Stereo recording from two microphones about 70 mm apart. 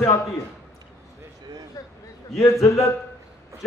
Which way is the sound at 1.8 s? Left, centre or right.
Left.